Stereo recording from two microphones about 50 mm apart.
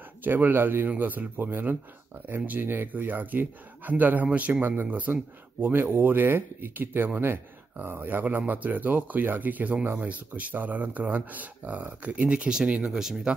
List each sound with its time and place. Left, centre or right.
0.2 s speech: right
12.4 s speech: centre